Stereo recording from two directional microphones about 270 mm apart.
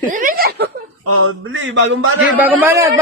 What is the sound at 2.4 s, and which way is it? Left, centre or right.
Speech, centre.